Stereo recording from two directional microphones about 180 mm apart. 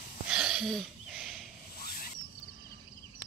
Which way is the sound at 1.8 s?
55° left (ahead or behind).